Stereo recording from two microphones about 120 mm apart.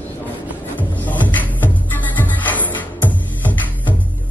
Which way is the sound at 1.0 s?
15° left (ahead or behind).